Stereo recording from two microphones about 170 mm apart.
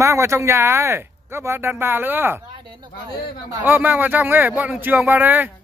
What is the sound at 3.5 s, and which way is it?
Speech, 10° right (ahead or behind).